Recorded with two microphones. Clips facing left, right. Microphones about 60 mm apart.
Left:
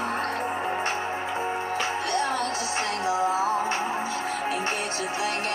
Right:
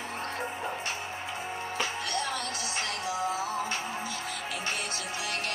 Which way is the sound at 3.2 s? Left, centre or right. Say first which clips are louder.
Left 7 dB; left.